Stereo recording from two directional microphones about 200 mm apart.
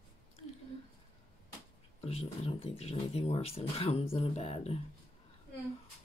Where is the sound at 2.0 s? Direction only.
30° left (ahead or behind).